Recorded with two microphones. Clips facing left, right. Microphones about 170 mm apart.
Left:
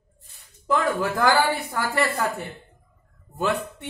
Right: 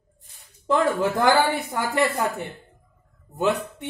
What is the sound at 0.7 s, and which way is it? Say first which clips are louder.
A man's voice: right 2 dB; 25° right (ahead or behind).